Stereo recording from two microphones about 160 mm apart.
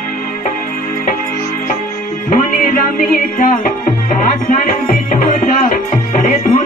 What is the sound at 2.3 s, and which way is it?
Music, 60° left (ahead or behind).